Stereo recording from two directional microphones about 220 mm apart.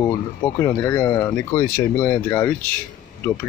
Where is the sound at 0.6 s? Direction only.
10° left (ahead or behind).